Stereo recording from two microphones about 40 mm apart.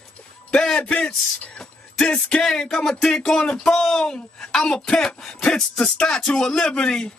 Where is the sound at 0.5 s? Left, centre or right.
Centre.